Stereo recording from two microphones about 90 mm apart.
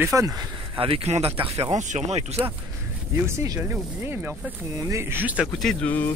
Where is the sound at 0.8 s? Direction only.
90° right.